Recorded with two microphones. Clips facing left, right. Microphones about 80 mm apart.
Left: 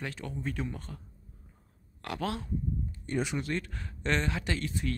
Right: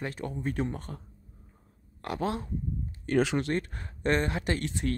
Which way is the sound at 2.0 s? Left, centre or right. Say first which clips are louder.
Right 3 dB; right.